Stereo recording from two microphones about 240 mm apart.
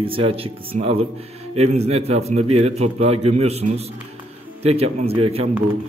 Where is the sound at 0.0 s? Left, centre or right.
Right.